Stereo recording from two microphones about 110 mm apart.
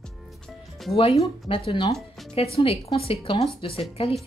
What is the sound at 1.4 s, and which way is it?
A woman's voice, 50° left (ahead or behind).